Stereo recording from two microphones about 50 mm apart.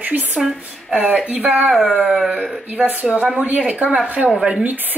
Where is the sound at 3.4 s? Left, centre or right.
Right.